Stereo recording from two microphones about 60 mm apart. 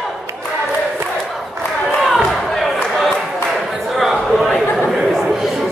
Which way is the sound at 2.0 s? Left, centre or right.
Centre.